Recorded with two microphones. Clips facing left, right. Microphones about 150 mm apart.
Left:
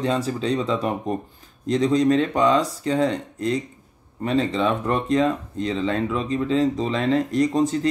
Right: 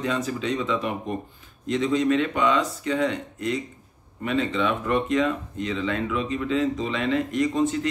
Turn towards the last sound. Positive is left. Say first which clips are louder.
# left 3 dB
turn(degrees=35)  # may be behind; listen again after turning